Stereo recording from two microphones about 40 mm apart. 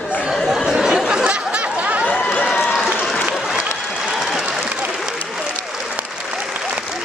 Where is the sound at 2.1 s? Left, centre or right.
Left.